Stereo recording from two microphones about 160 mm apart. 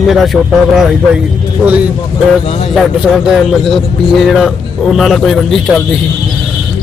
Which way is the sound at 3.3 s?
Centre (ahead or behind).